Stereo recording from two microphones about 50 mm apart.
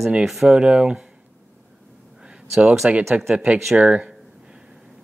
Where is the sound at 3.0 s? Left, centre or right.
Centre.